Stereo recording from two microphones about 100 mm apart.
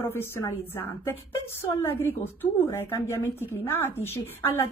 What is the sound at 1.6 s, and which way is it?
A woman's voice, 25° left (ahead or behind).